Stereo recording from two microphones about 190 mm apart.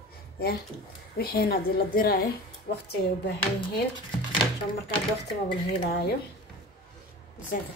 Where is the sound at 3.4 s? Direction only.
25° left (ahead or behind).